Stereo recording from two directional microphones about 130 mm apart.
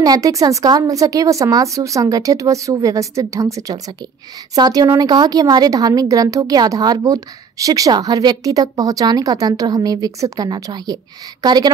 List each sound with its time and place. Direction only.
0.0 s a woman's voice: 30° right (ahead or behind)